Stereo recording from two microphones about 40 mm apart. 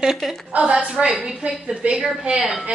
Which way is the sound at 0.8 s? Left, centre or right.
Right.